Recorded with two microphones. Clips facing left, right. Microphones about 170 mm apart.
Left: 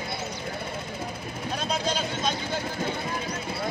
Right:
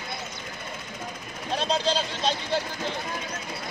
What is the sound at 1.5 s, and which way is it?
Vehicle, 30° right (ahead or behind).